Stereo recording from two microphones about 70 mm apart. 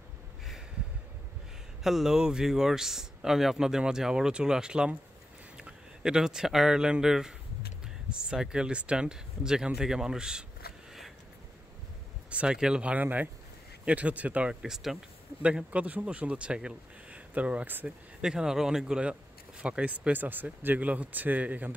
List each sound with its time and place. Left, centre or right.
1.8 s a man's voice: centre
12.3 s a man's voice: centre
14.5 s a man's voice: centre
15.4 s a man's voice: centre
17.8 s a man's voice: centre